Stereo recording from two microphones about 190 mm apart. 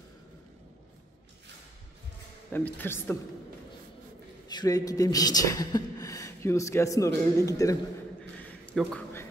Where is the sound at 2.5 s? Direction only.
10° left (ahead or behind).